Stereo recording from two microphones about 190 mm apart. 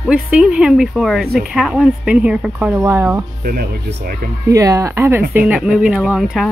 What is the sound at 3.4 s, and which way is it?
Speech, 55° right (ahead or behind).